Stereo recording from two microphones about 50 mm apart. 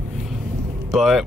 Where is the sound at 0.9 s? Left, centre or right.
Centre.